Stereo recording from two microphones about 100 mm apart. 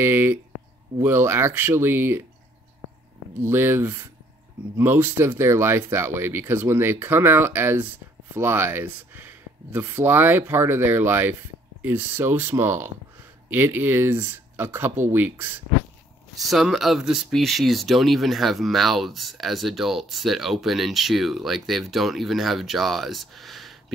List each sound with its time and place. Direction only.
0.0 s speech: 20° right (ahead or behind)
3.4 s speech: 25° right (ahead or behind)
16.3 s speech: centre (ahead or behind)